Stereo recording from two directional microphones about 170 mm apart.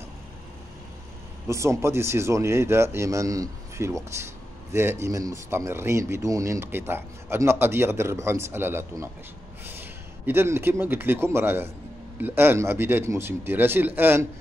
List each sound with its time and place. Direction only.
1.5 s a man's voice: 15° right (ahead or behind)